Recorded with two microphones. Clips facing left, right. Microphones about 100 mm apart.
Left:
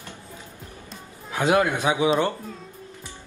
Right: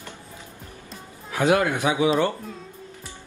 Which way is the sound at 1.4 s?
20° left (ahead or behind).